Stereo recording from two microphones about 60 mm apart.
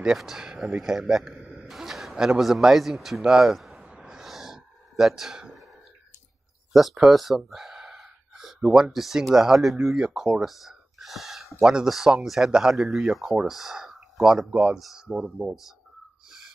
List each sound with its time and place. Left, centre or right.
0.0 s a man's voice: centre
3.9 s gasp: centre
4.2 s a sound: centre
6.7 s gasp: centre
8.5 s speech: centre
16.3 s wheeze: centre